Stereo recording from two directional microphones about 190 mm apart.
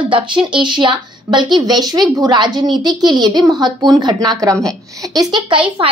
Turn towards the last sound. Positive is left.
turn(degrees=-25)  # may be behind; listen again after turning